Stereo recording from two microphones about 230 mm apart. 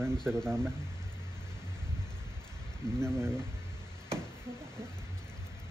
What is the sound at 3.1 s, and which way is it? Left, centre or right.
Speech, centre.